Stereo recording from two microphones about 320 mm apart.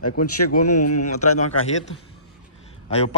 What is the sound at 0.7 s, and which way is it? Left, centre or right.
Speech, left.